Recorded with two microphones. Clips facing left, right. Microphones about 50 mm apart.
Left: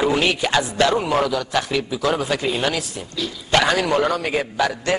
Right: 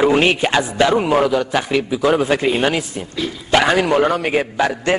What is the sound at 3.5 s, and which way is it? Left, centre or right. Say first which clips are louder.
Speech: right 3 dB; centre.